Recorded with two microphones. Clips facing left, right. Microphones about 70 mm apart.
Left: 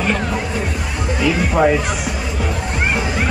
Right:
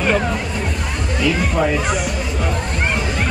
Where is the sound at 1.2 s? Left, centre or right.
Centre.